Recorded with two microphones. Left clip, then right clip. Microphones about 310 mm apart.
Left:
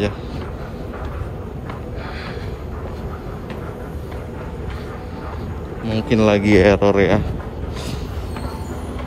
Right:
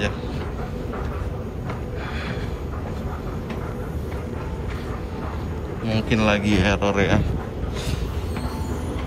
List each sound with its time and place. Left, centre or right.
5.9 s a man's voice: centre